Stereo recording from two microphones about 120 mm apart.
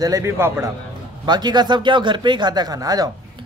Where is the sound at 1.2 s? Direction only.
35° right (ahead or behind).